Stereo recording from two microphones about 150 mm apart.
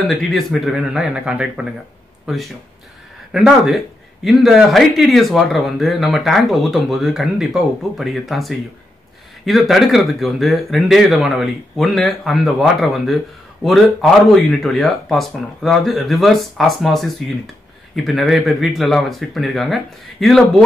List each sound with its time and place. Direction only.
0.1 s speech: centre (ahead or behind)